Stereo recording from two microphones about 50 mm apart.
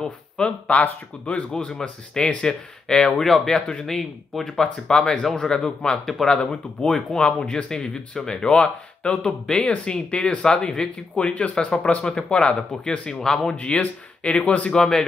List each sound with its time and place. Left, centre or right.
0.0 s speech: left
1.5 s speech: centre
13.6 s speech: left
14.7 s speech: centre